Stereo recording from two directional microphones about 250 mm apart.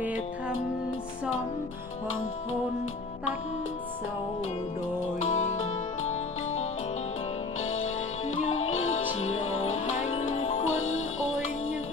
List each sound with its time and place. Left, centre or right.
5.3 s music: left
7.6 s music: left
10.3 s music: left
10.6 s music: left